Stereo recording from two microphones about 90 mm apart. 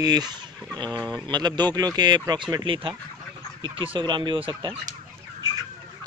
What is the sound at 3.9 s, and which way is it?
Speech, 60° right (ahead or behind).